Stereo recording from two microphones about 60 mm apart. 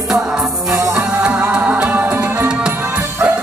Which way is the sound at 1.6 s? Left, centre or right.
Right.